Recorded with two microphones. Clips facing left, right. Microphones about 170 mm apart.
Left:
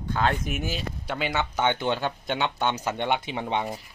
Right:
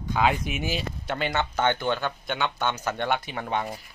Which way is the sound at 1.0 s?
5° left (ahead or behind).